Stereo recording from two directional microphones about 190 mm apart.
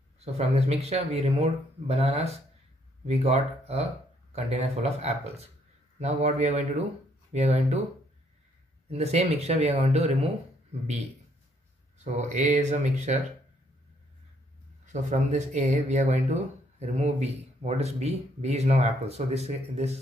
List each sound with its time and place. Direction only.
0.2 s speech: 35° right (ahead or behind)
8.9 s speech: 35° right (ahead or behind)
12.0 s speech: 40° right (ahead or behind)
14.9 s speech: 40° right (ahead or behind)